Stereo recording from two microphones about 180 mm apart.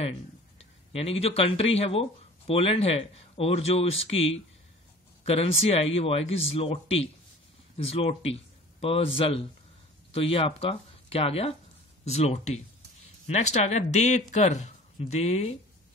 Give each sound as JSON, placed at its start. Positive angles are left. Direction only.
{"t": 0.9, "sound": "a man's voice", "side_deg": 35}